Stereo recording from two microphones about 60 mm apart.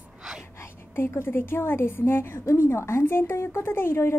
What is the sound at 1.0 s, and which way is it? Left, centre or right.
A woman's voice, left.